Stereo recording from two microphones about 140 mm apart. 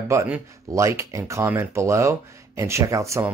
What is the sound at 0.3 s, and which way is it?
Speech, 20° right (ahead or behind).